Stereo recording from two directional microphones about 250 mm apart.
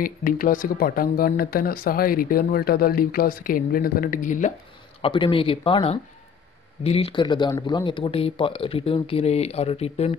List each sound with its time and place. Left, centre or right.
0.0 s speech: left
5.0 s speech: left